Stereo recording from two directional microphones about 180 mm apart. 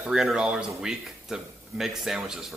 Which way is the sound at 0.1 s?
Centre (ahead or behind).